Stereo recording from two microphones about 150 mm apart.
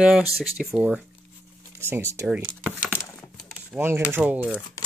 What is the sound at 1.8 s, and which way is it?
Speech, 15° right (ahead or behind).